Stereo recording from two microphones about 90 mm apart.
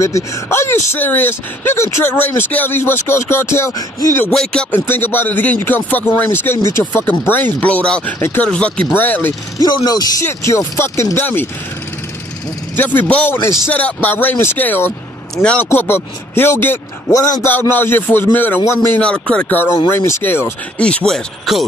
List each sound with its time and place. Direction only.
0.0 s speech: 35° left (ahead or behind)
4.3 s speech: 5° left (ahead or behind)
4.7 s speech: 20° left (ahead or behind)
9.6 s speech: 45° left (ahead or behind)
10.2 s speech: 35° left (ahead or behind)
12.7 s speech: 20° left (ahead or behind)
15.3 s speech: 10° left (ahead or behind)
15.6 s speech: 20° left (ahead or behind)
17.1 s a man's voice: 35° left (ahead or behind)
17.5 s speech: 20° left (ahead or behind)
18.6 s a man's voice: 30° left (ahead or behind)
18.9 s speech: 10° left (ahead or behind)
19.9 s speech: 30° left (ahead or behind)
20.7 s speech: 10° left (ahead or behind)